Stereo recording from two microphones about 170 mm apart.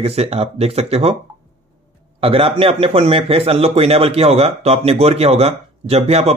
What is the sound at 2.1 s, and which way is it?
Speech, 35° right (ahead or behind).